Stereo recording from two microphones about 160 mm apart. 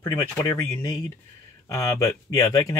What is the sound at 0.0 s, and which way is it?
Speech, 15° left (ahead or behind).